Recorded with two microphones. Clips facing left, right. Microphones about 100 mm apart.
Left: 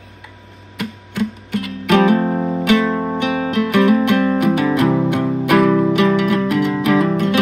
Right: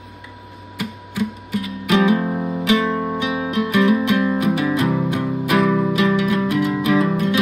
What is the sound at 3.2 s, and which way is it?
Music, 60° left (ahead or behind).